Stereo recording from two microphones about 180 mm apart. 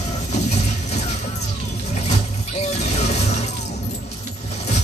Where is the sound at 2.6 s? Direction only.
40° left (ahead or behind).